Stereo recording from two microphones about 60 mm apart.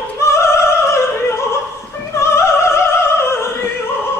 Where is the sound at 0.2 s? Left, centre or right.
Left.